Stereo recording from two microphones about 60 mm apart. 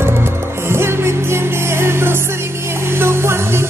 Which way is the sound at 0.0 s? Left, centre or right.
Right.